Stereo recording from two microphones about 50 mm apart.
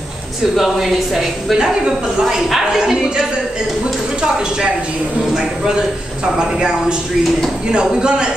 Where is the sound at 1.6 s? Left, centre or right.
Centre.